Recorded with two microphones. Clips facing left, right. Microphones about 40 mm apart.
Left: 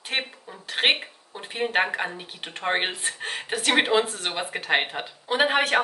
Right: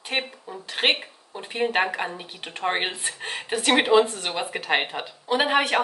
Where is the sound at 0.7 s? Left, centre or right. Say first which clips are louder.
Left 1 dB; centre.